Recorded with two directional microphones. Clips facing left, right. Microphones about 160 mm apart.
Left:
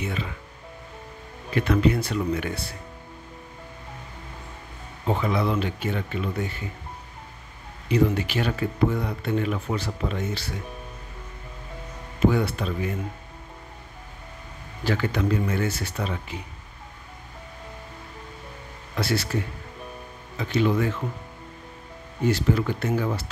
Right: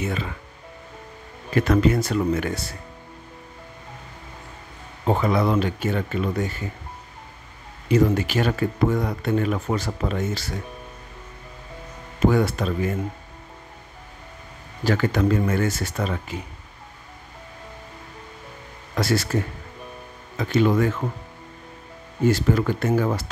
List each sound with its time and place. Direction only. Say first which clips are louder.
0.0 s speech: right 3 dB; 45° right (ahead or behind)
1.5 s speech: right 3 dB; 45° right (ahead or behind)
5.0 s speech: right 4 dB; 45° right (ahead or behind)
7.9 s speech: right 3 dB; 45° right (ahead or behind)
12.5 s speech: right 4 dB; 45° right (ahead or behind)
14.9 s speech: right 4 dB; 45° right (ahead or behind)
19.0 s speech: right 3 dB; 45° right (ahead or behind)
22.2 s speech: right 3 dB; 45° right (ahead or behind)